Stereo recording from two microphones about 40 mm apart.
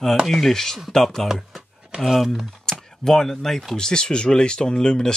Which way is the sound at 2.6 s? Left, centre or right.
Centre.